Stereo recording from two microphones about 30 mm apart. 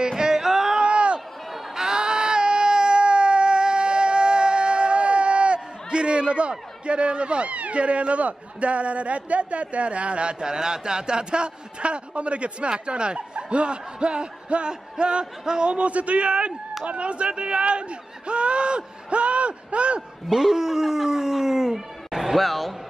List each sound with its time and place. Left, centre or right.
0.1 s a sound: centre
0.7 s a sound: right
1.8 s baby cry: right
6.9 s a man's voice: right
10.4 s a man's voice: right
15.7 s a man's voice: right
20.2 s speech: centre